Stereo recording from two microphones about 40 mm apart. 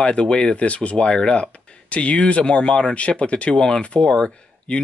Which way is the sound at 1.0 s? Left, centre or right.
Centre.